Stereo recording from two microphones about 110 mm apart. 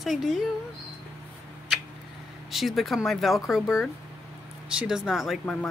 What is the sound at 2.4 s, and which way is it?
Speech, centre (ahead or behind).